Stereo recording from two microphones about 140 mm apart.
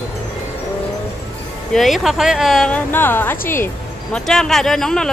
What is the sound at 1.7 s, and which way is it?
Speech, centre (ahead or behind).